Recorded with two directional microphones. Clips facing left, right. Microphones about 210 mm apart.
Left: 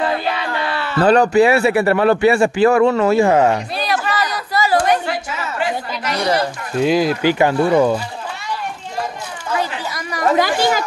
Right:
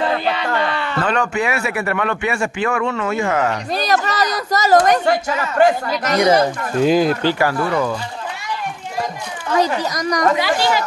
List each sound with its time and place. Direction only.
0.7 s a sound: 5° left (ahead or behind)
1.0 s a man's voice: 35° left (ahead or behind)
3.7 s a woman's voice: 40° right (ahead or behind)
6.8 s speech: centre (ahead or behind)
7.2 s speech: 20° left (ahead or behind)
9.6 s speech: 40° right (ahead or behind)
10.3 s speech: 45° left (ahead or behind)